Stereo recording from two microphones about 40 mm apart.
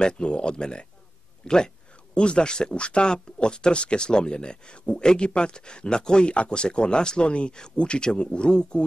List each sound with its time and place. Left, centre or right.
0.0 s speech: left